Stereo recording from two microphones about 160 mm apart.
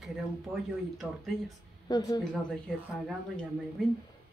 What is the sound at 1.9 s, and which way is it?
Speech, 25° left (ahead or behind).